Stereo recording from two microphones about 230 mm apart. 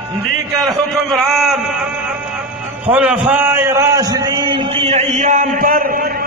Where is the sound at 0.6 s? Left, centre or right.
Centre.